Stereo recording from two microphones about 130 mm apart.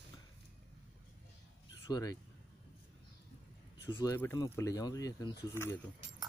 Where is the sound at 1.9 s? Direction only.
30° left (ahead or behind).